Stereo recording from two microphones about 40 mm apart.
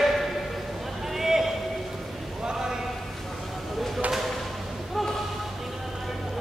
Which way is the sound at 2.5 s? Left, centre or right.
Centre.